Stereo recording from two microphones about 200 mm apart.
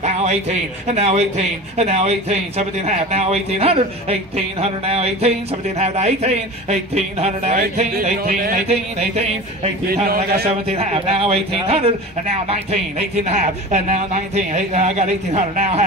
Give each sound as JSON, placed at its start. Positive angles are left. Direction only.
{"t": 0.0, "sound": "a man's voice", "side_deg": -35}
{"t": 8.6, "sound": "a man's voice", "side_deg": -30}
{"t": 10.0, "sound": "speech", "side_deg": -50}
{"t": 10.5, "sound": "a man's voice", "side_deg": -30}
{"t": 13.2, "sound": "a man's voice", "side_deg": -35}